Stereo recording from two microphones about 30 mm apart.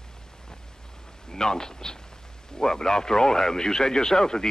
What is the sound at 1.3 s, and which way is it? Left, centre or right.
Speech, left.